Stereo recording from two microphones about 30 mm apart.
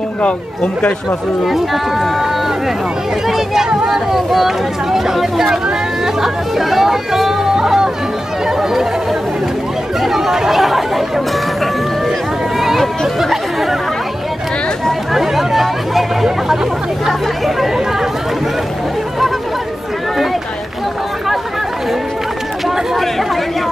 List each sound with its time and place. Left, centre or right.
1.4 s speech: centre
3.3 s speech: centre
7.5 s music: centre
10.0 s speech: centre
12.5 s a sound: centre
13.2 s speech: centre
15.1 s speech: centre